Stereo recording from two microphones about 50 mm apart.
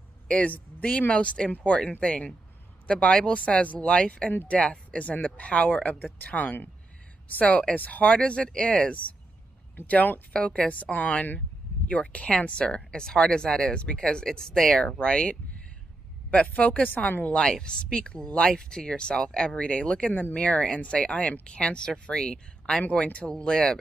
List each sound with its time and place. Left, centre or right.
0.5 s speech: left
9.8 s speech: left
10.3 s speech: left
18.5 s speech: centre
20.1 s speech: left; by 22.8 s centre
22.8 s speech: left